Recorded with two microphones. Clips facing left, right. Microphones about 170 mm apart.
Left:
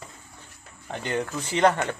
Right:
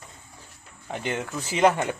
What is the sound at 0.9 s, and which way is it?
A man's voice, 5° right (ahead or behind).